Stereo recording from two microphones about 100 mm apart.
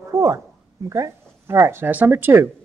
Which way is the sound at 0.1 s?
30° right (ahead or behind).